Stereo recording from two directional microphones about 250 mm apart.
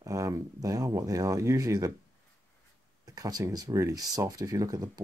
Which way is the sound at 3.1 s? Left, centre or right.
Centre.